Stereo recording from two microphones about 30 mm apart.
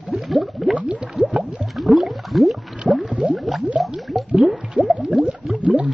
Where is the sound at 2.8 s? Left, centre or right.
Centre.